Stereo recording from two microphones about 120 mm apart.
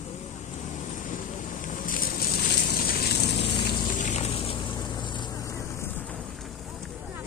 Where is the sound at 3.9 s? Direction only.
90° left.